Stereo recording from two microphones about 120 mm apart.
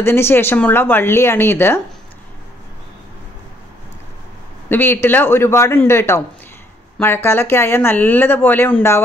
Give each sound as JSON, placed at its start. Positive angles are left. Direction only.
{"t": 0.0, "sound": "speech", "side_deg": 20}
{"t": 4.6, "sound": "speech", "side_deg": 15}